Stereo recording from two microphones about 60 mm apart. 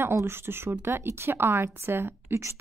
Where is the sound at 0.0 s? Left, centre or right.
Right.